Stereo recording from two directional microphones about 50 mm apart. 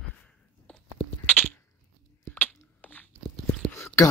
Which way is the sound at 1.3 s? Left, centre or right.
Left.